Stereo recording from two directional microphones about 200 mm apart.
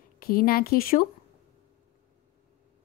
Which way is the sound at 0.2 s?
45° left (ahead or behind).